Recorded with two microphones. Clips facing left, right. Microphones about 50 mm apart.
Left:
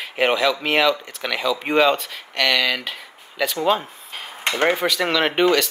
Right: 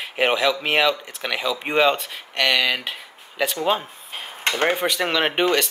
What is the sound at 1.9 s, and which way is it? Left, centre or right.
Speech, right.